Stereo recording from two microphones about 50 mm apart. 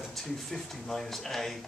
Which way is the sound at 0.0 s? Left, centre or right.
Centre.